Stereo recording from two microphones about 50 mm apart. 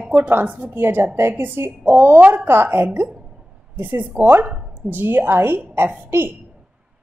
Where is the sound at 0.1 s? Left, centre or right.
Right.